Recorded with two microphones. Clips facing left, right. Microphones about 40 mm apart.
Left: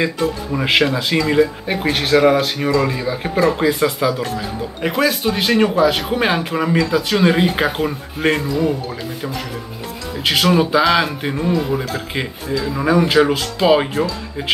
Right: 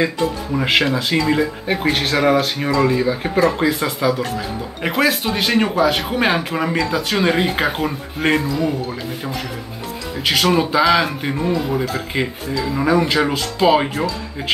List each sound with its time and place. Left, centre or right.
0.0 s speech: centre
10.2 s speech: centre